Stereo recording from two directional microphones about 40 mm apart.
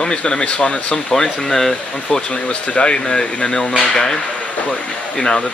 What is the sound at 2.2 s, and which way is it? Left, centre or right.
Speech, left.